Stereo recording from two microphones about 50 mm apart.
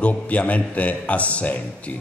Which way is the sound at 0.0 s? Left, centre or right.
Left.